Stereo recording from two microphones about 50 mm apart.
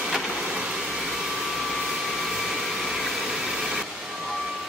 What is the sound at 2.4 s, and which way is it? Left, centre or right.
Vacuum cleaner, centre.